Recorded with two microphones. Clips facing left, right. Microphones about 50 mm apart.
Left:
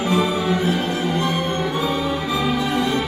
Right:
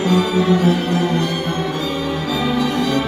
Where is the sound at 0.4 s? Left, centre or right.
Centre.